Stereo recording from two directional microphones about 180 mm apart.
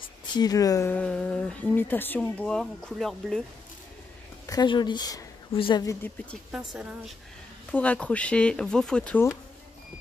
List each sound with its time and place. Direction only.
0.3 s speech: 20° left (ahead or behind); by 3.4 s centre (ahead or behind)
4.5 s a woman's voice: 25° left (ahead or behind)
6.5 s a woman's voice: 5° right (ahead or behind)
7.7 s speech: 10° left (ahead or behind)